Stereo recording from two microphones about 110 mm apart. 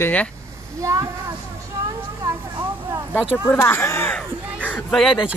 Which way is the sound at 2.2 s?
35° right (ahead or behind).